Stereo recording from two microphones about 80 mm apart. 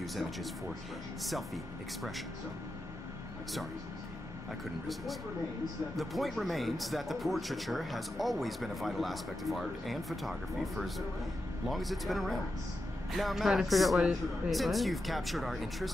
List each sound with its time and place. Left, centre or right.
0.0 s speech: centre
5.9 s speech: centre